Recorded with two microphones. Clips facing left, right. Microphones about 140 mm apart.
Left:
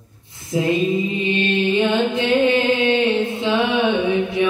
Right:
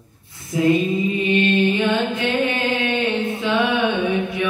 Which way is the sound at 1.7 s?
25° left (ahead or behind).